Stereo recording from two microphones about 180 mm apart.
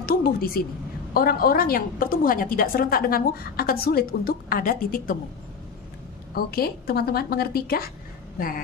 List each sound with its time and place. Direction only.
0.0 s a woman's voice: 55° left (ahead or behind)
6.3 s a woman's voice: 55° left (ahead or behind)